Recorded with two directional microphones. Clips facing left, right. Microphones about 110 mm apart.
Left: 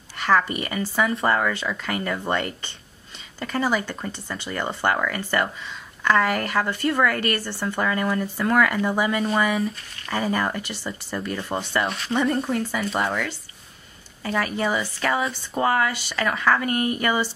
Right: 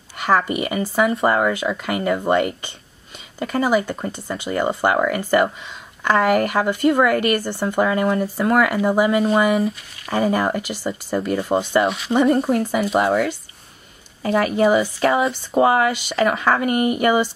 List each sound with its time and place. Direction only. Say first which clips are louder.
0.2 s speech: right 3 dB; 15° right (ahead or behind)
10.0 s speech: right 5 dB; 15° right (ahead or behind)
11.5 s speech: right 7 dB; 25° right (ahead or behind)
12.4 s speech: right 6 dB; 15° right (ahead or behind)
15.0 s speech: right 5 dB; 30° right (ahead or behind)
15.5 s speech: right 6 dB; 15° right (ahead or behind)